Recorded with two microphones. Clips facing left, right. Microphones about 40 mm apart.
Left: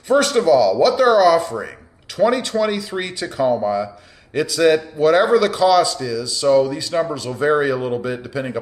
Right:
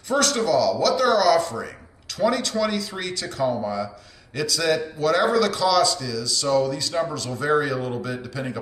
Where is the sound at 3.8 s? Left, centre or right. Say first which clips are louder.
Left 3 dB; left.